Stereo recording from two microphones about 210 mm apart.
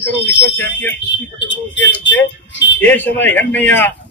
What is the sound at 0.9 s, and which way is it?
Speech, 60° left (ahead or behind).